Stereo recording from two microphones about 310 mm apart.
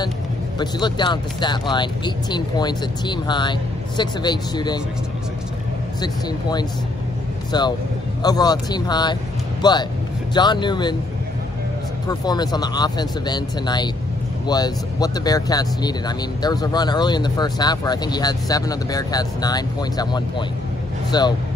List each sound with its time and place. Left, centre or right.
0.6 s speech: centre
5.9 s speech: centre
12.1 s speech: centre